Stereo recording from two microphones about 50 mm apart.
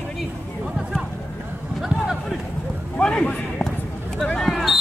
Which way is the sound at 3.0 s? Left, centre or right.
Centre.